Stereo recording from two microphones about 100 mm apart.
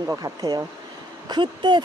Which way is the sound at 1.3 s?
55° right (ahead or behind).